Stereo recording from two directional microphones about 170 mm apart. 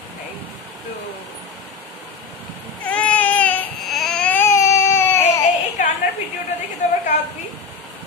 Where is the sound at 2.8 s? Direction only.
10° left (ahead or behind).